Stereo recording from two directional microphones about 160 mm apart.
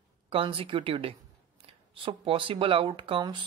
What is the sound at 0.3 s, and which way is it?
Speech, 35° right (ahead or behind).